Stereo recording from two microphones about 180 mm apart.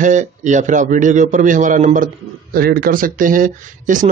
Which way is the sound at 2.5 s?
55° right (ahead or behind).